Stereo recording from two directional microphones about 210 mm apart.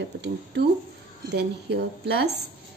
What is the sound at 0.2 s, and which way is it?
A woman's voice, 55° right (ahead or behind).